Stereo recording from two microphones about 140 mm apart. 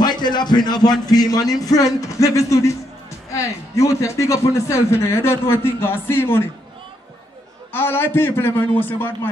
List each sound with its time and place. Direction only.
0.0 s a man's voice: 30° left (ahead or behind)
3.7 s a man's voice: 20° left (ahead or behind)
7.7 s a man's voice: 15° left (ahead or behind)